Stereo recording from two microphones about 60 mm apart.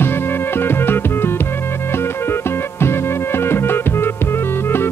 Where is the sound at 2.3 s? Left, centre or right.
Left.